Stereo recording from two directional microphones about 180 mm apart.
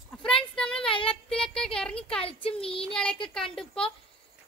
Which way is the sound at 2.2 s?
30° left (ahead or behind).